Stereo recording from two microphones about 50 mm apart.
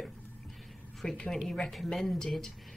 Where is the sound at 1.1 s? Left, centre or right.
Centre.